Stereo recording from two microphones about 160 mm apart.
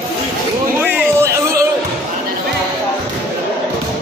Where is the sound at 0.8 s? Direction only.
15° right (ahead or behind).